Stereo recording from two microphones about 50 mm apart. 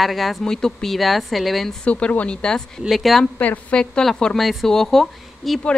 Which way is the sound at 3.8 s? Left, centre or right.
Centre.